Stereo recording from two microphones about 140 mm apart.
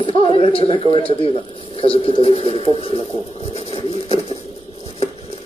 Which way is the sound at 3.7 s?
45° left (ahead or behind).